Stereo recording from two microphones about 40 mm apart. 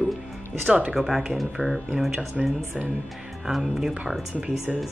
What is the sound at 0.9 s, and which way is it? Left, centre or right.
Speech, centre.